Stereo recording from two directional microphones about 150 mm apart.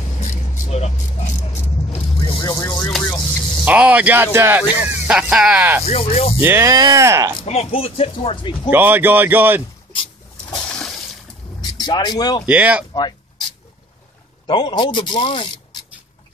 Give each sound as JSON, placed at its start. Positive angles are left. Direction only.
{"t": 0.2, "sound": "vehicle", "side_deg": 50}
{"t": 2.9, "sound": "a sound", "side_deg": 5}
{"t": 3.6, "sound": "speech", "side_deg": -10}
{"t": 5.9, "sound": "speech", "side_deg": 45}
{"t": 6.4, "sound": "speech", "side_deg": -20}
{"t": 7.4, "sound": "speech", "side_deg": 45}
{"t": 8.6, "sound": "speech", "side_deg": -15}
{"t": 10.7, "sound": "water", "side_deg": 5}
{"t": 11.6, "sound": "speech", "side_deg": 25}
{"t": 12.4, "sound": "speech", "side_deg": -10}
{"t": 14.5, "sound": "speech", "side_deg": 30}